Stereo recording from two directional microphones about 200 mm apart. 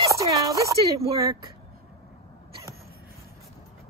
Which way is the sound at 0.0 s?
15° right (ahead or behind).